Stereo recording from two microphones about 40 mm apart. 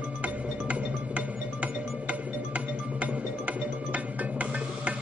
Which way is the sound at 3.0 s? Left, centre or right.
Right.